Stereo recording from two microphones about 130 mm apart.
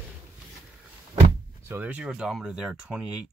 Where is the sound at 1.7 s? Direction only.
10° right (ahead or behind).